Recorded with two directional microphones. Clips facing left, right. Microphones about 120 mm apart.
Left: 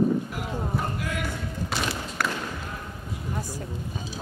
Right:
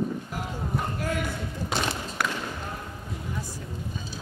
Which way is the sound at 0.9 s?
40° right (ahead or behind).